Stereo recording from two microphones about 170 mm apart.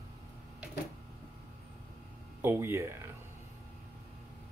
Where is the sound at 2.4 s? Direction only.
15° right (ahead or behind).